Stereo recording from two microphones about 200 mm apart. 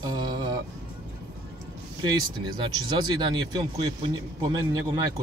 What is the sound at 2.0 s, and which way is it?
Speech, 20° right (ahead or behind).